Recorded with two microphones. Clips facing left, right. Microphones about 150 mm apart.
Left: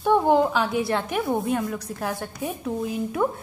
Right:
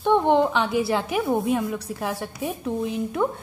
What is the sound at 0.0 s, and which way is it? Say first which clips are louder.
A woman's voice: even; 5° left (ahead or behind).